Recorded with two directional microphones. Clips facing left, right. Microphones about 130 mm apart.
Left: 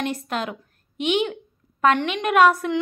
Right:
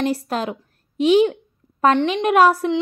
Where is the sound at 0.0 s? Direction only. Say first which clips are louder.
Right 5 dB; 30° right (ahead or behind).